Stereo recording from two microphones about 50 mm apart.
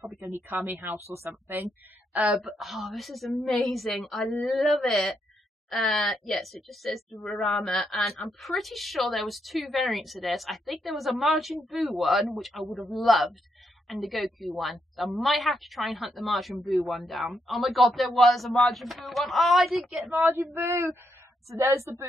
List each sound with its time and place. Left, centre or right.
0.2 s a woman's voice: right
2.1 s a woman's voice: right
2.4 s a woman's voice: centre
20.6 s a woman's voice: right